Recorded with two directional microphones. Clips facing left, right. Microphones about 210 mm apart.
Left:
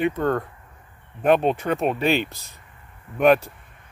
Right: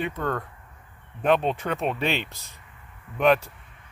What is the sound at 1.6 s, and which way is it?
Speech, 30° left (ahead or behind).